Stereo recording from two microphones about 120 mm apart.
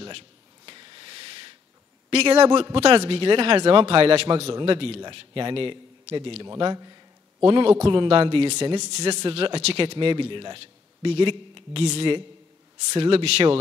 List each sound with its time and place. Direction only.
0.7 s a sound: 40° right (ahead or behind)
2.0 s a man's voice: 60° right (ahead or behind)
2.4 s a man's voice: 40° right (ahead or behind)
2.8 s a man's voice: 55° right (ahead or behind)
6.4 s a man's voice: 35° right (ahead or behind)
7.4 s speech: 50° right (ahead or behind)
8.7 s speech: 65° right (ahead or behind)